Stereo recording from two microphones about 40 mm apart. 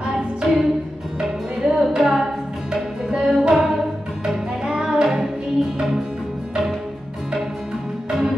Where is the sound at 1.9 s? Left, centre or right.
Centre.